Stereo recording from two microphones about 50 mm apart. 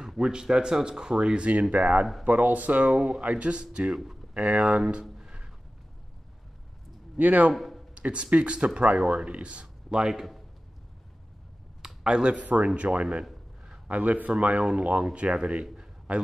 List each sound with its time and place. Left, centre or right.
0.0 s speech: centre
3.6 s speech: centre
5.1 s music: centre
7.2 s speech: right
7.5 s a sound: centre
7.9 s speech: right
11.8 s speech: centre
13.2 s a sound: centre
13.8 s speech: right
15.6 s a sound: centre
16.1 s speech: right